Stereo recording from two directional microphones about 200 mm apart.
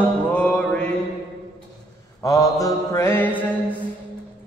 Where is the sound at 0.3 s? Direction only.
5° left (ahead or behind).